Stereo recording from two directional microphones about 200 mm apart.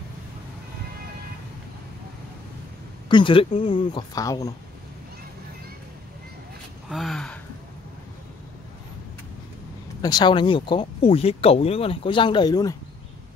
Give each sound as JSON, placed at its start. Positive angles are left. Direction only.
{"t": 3.1, "sound": "speech", "side_deg": 25}
{"t": 6.9, "sound": "speech", "side_deg": 0}
{"t": 10.0, "sound": "speech", "side_deg": 20}